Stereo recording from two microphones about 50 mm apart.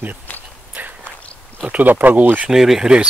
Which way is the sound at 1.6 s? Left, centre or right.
Right.